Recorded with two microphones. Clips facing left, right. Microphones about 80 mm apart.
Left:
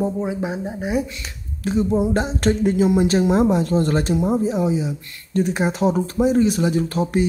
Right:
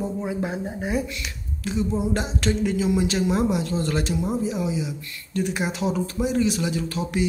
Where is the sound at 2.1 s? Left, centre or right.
Left.